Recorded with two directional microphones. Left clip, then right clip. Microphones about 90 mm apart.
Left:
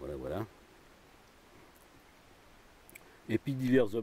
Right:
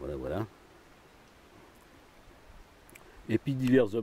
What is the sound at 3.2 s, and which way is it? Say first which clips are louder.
Speech: right 3 dB; 10° left (ahead or behind).